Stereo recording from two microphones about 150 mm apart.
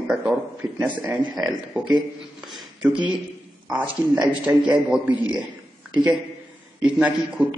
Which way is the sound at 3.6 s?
10° right (ahead or behind).